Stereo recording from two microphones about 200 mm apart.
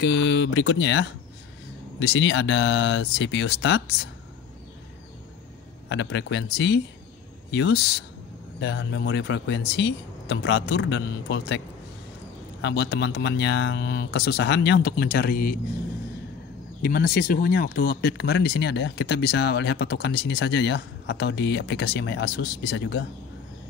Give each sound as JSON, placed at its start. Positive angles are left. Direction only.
{"t": 0.0, "sound": "speech", "side_deg": 60}
{"t": 5.9, "sound": "speech", "side_deg": 60}
{"t": 12.6, "sound": "speech", "side_deg": 60}
{"t": 16.8, "sound": "speech", "side_deg": 50}